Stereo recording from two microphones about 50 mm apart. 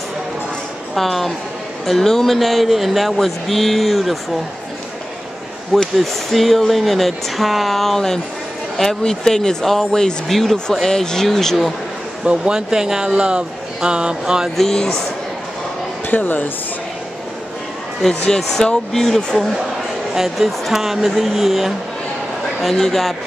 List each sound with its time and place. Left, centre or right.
0.9 s speech: centre
5.9 s speech: centre
12.5 s speech: centre
14.6 s speech: centre
16.1 s speech: left
18.2 s speech: centre